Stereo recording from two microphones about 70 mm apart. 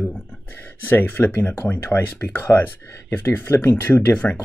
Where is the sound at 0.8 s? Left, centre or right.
Left.